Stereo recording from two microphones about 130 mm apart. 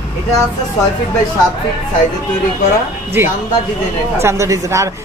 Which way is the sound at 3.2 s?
15° right (ahead or behind).